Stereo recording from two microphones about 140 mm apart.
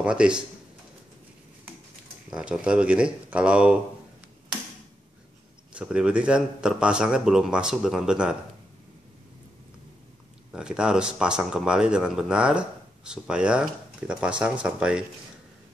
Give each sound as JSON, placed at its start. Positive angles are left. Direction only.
{"t": 0.0, "sound": "speech", "side_deg": -5}
{"t": 2.3, "sound": "speech", "side_deg": -5}
{"t": 5.7, "sound": "speech", "side_deg": -5}
{"t": 10.5, "sound": "speech", "side_deg": -5}